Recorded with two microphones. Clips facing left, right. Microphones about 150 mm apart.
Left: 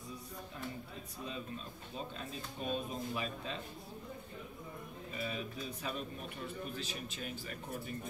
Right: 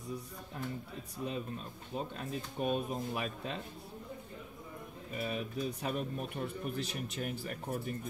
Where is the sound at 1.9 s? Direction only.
55° right (ahead or behind).